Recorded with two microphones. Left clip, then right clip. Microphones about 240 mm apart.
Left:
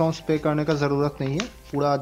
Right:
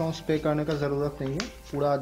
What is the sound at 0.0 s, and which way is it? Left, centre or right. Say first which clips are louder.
Speech: left 4 dB; centre.